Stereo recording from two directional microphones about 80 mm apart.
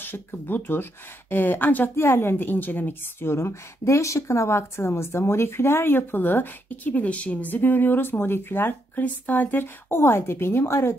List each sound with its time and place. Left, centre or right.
0.0 s a woman's voice: left